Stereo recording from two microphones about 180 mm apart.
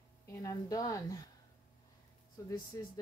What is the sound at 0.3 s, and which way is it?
Speech, 20° left (ahead or behind).